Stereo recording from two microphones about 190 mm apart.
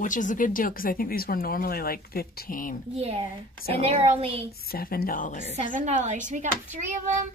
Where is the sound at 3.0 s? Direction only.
35° right (ahead or behind).